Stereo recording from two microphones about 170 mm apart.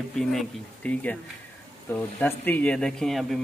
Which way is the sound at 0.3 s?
5° left (ahead or behind).